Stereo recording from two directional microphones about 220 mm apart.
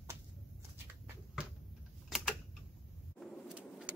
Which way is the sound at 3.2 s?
5° right (ahead or behind).